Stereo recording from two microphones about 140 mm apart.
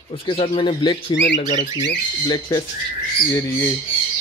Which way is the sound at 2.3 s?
30° left (ahead or behind).